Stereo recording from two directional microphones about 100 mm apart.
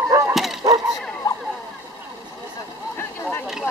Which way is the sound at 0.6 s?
40° right (ahead or behind).